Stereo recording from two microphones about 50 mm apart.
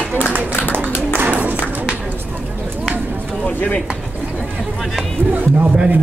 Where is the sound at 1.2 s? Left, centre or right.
Right.